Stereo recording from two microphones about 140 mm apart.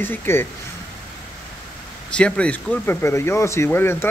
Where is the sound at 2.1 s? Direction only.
10° left (ahead or behind).